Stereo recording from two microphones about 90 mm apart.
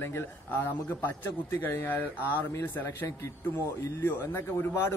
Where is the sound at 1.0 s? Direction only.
20° left (ahead or behind).